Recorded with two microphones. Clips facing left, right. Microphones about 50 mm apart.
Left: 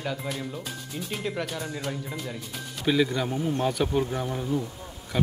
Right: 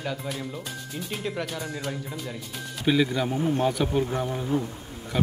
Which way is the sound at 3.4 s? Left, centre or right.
Centre.